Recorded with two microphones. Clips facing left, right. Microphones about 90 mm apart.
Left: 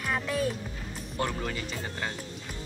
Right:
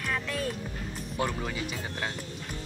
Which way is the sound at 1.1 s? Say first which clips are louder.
Even; 10° right (ahead or behind).